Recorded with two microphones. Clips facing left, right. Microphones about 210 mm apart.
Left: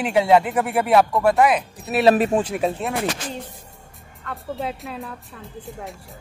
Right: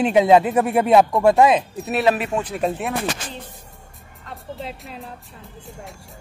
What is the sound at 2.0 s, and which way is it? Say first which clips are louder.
Speech: left 4 dB; 35° left (ahead or behind).